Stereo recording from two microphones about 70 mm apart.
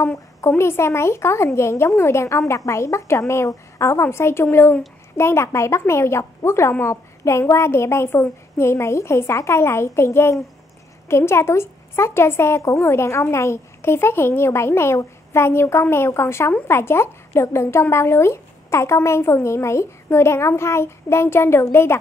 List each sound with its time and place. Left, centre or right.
0.5 s speech: left